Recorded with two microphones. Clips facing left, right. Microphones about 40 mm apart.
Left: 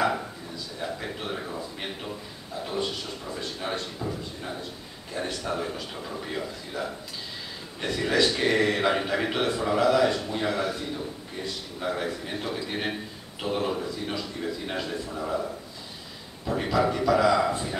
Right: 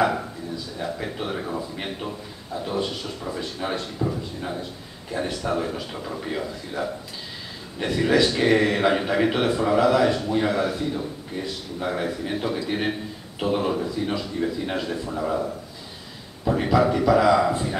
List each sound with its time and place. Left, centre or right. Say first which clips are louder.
0.7 s a man's voice: right 3 dB; centre
2.6 s speech: right 3 dB; centre
4.0 s a man's voice: right 6 dB; centre
15.0 s a man's voice: right 6 dB; centre
16.6 s a man's voice: right 4 dB; centre